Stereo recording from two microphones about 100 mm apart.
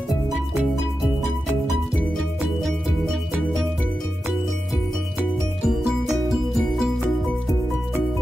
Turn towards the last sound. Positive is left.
turn(degrees=-5)  # may be behind; listen again after turning